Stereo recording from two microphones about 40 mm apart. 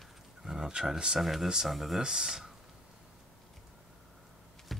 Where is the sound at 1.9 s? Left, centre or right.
Centre.